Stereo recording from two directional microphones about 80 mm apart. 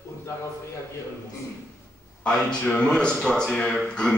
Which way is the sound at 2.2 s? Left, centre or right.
Centre.